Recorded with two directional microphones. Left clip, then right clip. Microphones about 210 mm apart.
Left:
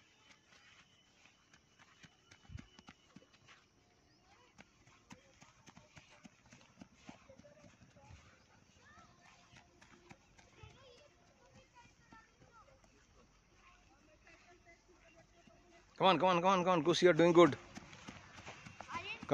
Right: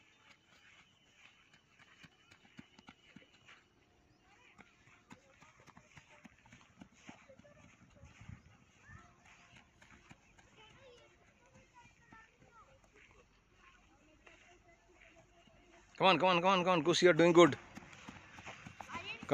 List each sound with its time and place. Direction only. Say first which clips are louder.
2.0 s run: right 1 dB; 5° right (ahead or behind)
9.5 s clip-clop: right 1 dB; 10° right (ahead or behind)
15.9 s a man's voice: right 1 dB; 5° right (ahead or behind)
18.9 s clip-clop: left 1 dB; 25° right (ahead or behind)